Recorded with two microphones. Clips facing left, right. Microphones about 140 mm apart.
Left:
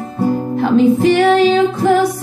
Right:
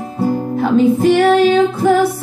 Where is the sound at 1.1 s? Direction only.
5° right (ahead or behind).